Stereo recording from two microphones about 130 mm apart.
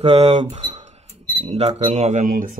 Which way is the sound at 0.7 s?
60° right (ahead or behind).